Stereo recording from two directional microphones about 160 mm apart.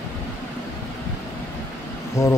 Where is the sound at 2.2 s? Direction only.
20° left (ahead or behind).